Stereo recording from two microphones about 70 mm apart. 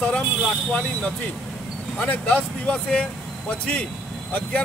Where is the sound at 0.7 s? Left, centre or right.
Centre.